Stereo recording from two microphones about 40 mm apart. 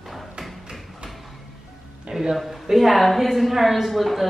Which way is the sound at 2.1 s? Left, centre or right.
Centre.